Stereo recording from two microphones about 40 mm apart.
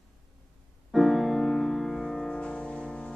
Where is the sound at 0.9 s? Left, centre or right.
Centre.